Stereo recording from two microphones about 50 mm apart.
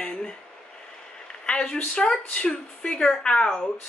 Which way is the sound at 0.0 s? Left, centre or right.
Centre.